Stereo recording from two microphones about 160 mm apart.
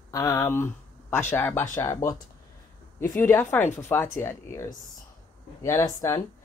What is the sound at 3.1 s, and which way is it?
Speech, 15° left (ahead or behind).